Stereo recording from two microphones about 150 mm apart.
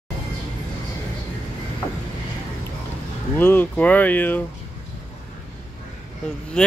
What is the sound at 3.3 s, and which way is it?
Speech, 10° left (ahead or behind).